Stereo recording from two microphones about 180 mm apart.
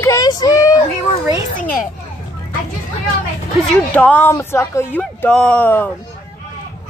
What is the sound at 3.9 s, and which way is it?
Speech, 10° left (ahead or behind).